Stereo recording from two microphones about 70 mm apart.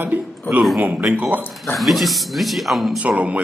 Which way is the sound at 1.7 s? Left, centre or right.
Centre.